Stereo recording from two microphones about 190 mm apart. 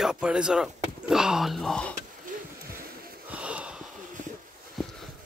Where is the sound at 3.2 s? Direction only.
5° right (ahead or behind).